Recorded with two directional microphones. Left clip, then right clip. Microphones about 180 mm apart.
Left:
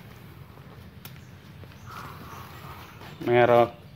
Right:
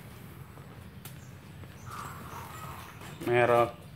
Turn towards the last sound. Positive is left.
turn(degrees=40)  # may be behind; listen again after turning